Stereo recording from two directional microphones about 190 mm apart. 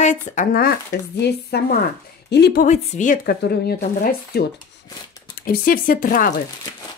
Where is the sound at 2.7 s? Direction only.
40° left (ahead or behind).